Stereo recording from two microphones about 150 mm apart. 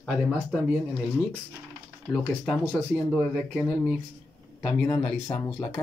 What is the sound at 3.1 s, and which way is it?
Speech, 5° right (ahead or behind).